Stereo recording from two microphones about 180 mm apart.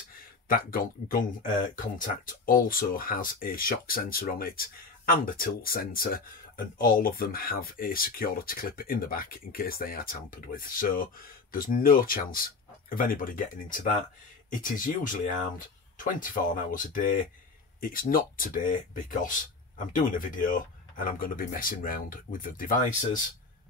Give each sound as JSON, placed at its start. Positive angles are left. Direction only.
{"t": 0.5, "sound": "speech", "side_deg": 50}